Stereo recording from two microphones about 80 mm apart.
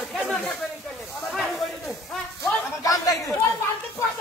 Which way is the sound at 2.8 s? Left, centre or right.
Left.